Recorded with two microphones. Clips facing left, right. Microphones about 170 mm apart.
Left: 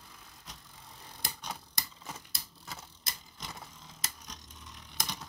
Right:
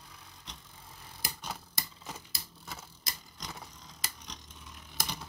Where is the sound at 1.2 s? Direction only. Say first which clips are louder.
Right 1 dB; 5° right (ahead or behind).